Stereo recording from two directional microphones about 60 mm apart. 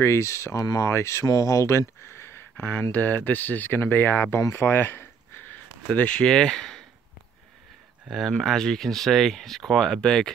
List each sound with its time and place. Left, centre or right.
0.0 s speech: left
0.8 s speech: left
1.2 s speech: left
2.5 s speech: left
5.9 s speech: centre
8.3 s speech: centre